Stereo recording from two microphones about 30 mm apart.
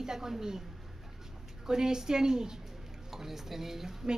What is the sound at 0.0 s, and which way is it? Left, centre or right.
Speech, centre.